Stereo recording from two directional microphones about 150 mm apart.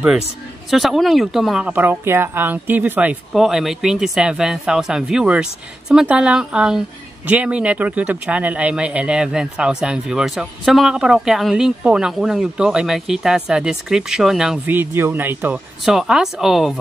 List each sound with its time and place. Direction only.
0.7 s speech: centre (ahead or behind)
1.7 s speech: 15° right (ahead or behind)
14.8 s speech: 15° right (ahead or behind)
15.8 s speech: centre (ahead or behind)